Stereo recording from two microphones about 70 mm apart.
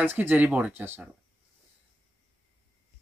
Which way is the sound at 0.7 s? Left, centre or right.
Right.